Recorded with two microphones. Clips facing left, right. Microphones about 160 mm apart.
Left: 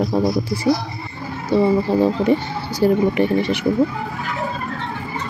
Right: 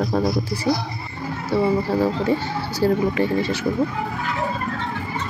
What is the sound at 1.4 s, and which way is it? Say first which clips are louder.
Speech: left 4 dB; 20° left (ahead or behind).